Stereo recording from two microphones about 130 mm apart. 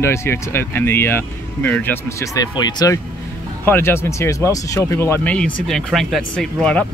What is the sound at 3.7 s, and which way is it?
Speech, 20° left (ahead or behind).